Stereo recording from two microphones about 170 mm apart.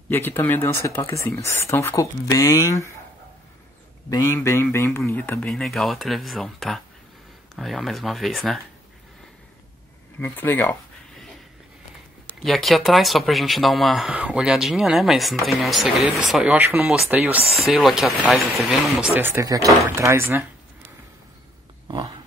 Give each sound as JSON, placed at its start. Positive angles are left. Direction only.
{"t": 0.1, "sound": "a man's voice", "side_deg": 10}
{"t": 4.1, "sound": "a man's voice", "side_deg": 15}
{"t": 10.1, "sound": "a man's voice", "side_deg": 10}
{"t": 12.4, "sound": "speech", "side_deg": 0}
{"t": 21.8, "sound": "a sound", "side_deg": -30}